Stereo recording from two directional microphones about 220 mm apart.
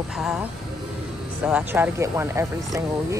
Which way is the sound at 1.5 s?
5° right (ahead or behind).